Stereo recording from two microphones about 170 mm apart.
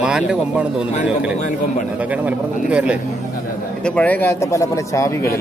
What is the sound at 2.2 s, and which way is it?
Speech, 5° right (ahead or behind).